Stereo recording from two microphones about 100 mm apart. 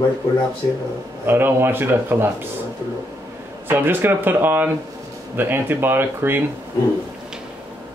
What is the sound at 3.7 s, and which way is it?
Speech, 20° right (ahead or behind).